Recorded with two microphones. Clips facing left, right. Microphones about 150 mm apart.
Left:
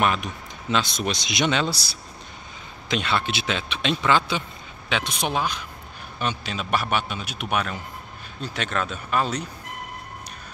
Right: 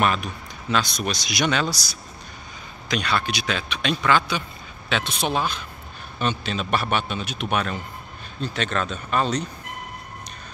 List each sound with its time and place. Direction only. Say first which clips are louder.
0.0 s a man's voice: right 1 dB; 20° left (ahead or behind)